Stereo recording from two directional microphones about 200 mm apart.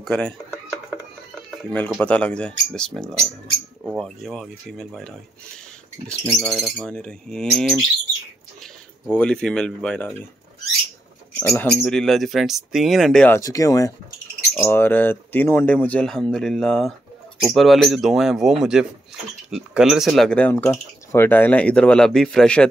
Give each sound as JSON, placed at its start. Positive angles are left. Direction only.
{"t": 0.0, "sound": "music", "side_deg": 5}
{"t": 1.6, "sound": "speech", "side_deg": 5}
{"t": 6.2, "sound": "speech", "side_deg": 0}
{"t": 9.1, "sound": "speech", "side_deg": 5}
{"t": 11.3, "sound": "speech", "side_deg": 10}
{"t": 13.4, "sound": "speech", "side_deg": 15}